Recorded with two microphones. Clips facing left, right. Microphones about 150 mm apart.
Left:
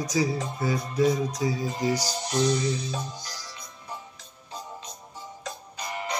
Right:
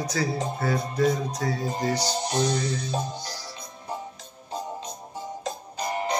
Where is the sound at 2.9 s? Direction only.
35° right (ahead or behind).